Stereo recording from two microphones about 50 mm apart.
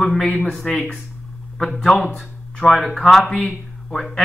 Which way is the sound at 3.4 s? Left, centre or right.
Centre.